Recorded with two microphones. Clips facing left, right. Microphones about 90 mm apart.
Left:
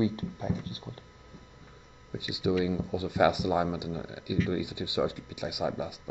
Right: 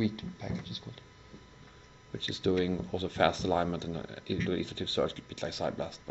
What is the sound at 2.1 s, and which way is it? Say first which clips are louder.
Speech: left 1 dB; 10° left (ahead or behind).